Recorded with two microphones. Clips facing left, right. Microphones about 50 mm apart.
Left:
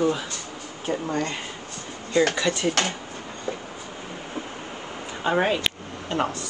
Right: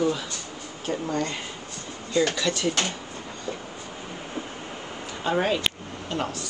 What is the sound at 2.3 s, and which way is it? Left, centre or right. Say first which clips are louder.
Speech: left 2 dB; left.